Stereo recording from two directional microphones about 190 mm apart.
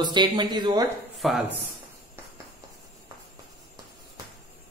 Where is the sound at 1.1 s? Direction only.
Centre (ahead or behind).